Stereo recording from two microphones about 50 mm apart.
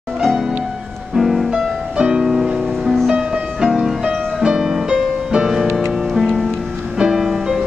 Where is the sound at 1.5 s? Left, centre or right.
Centre.